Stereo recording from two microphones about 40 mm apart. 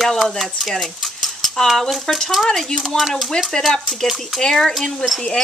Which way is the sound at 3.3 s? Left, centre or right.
Centre.